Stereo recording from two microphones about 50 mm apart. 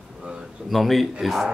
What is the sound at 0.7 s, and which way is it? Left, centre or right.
Speech, centre.